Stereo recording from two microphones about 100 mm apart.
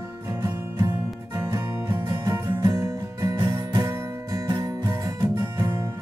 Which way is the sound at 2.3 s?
30° right (ahead or behind).